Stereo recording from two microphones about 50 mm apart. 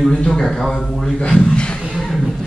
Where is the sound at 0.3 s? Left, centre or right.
Centre.